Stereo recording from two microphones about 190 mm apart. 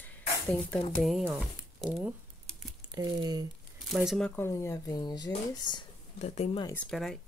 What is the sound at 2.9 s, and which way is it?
Speech, 20° right (ahead or behind).